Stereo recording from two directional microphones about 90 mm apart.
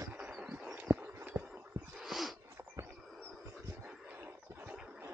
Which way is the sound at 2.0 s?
Centre (ahead or behind).